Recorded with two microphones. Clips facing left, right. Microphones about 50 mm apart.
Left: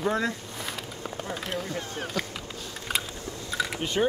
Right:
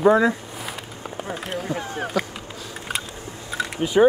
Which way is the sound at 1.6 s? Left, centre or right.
Centre.